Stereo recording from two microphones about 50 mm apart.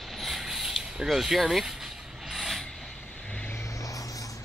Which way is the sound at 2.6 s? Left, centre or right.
Centre.